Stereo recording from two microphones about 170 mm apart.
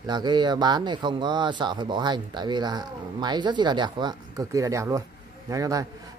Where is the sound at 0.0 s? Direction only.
25° right (ahead or behind).